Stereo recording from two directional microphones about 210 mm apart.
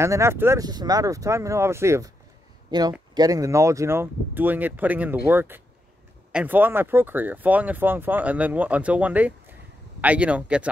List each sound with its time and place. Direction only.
0.0 s speech: 15° right (ahead or behind)